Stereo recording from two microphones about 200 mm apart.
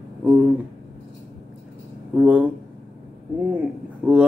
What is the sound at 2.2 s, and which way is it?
Speech, 5° right (ahead or behind).